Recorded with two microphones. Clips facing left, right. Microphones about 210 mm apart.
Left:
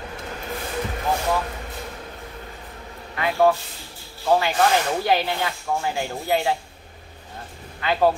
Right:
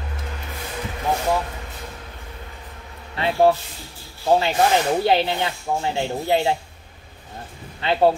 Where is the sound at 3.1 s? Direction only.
30° right (ahead or behind).